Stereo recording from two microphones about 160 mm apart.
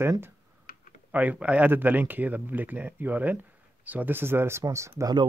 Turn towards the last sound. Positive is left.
turn(degrees=-20)  # may be behind; listen again after turning